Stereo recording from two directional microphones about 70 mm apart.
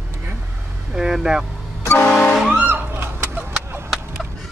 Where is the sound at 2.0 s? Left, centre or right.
Centre.